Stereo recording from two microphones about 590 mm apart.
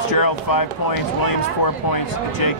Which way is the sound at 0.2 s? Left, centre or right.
Left.